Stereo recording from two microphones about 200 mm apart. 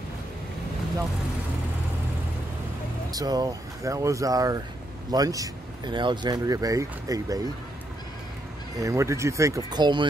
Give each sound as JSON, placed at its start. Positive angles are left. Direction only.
{"t": 3.1, "sound": "speech", "side_deg": -20}
{"t": 8.7, "sound": "speech", "side_deg": -15}